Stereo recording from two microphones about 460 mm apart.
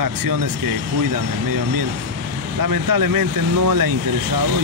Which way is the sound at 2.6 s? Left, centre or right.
Right.